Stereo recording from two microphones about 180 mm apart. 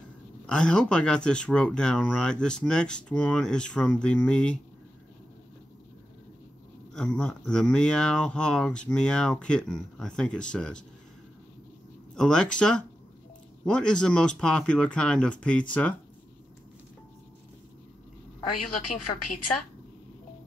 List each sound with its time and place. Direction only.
0.5 s speech: 5° left (ahead or behind)
6.9 s speech: 5° left (ahead or behind)
12.2 s speech: 5° left (ahead or behind)
18.9 s a woman's voice: 45° left (ahead or behind)